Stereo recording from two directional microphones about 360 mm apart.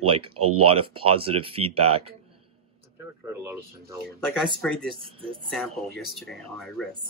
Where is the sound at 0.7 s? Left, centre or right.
Centre.